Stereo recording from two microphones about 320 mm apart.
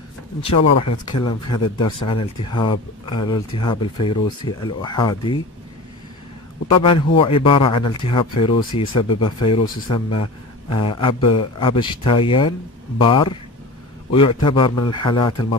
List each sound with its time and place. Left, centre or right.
0.6 s speech: left
1.1 s speech: centre
6.8 s speech: centre